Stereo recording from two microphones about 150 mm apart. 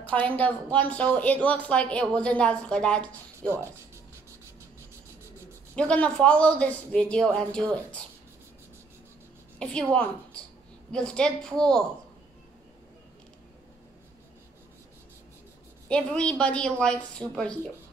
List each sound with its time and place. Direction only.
0.1 s a woman's voice: 10° left (ahead or behind)
3.3 s speech: 15° right (ahead or behind)
5.8 s a woman's voice: 5° left (ahead or behind)
9.6 s a woman's voice: 5° left (ahead or behind)
10.9 s a woman's voice: 5° left (ahead or behind)
15.9 s a woman's voice: 5° left (ahead or behind)